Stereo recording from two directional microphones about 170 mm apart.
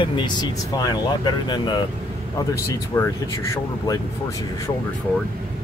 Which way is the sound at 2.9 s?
15° left (ahead or behind).